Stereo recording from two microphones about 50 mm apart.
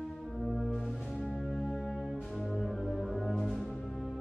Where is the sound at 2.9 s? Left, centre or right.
Centre.